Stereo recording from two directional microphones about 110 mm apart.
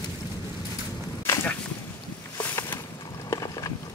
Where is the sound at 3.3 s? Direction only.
35° left (ahead or behind).